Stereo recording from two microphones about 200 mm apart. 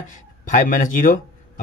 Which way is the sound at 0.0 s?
40° left (ahead or behind).